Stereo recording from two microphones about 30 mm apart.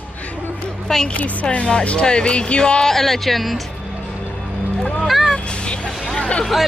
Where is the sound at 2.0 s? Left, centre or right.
Left.